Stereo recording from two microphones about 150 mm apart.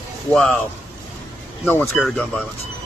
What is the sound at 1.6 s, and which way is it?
Speech, 10° left (ahead or behind).